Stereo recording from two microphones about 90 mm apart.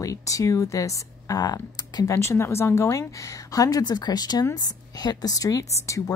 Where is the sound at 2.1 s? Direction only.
30° left (ahead or behind).